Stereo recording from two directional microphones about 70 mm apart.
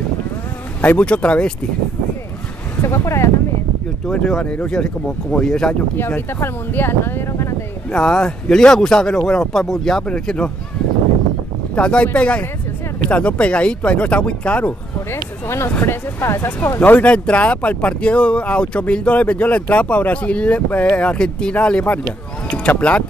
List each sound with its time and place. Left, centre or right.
0.7 s speech: left
2.8 s speech: left
4.1 s speech: centre
5.9 s speech: left
7.9 s speech: centre
11.7 s speech: centre
15.4 s speech: left; by 23.0 s centre